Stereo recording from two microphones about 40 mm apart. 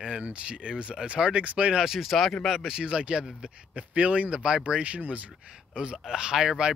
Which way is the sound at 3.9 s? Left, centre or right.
Right.